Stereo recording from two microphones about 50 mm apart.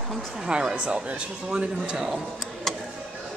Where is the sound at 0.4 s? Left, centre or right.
Centre.